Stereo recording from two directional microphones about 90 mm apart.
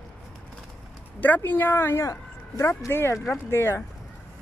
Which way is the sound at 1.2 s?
20° left (ahead or behind).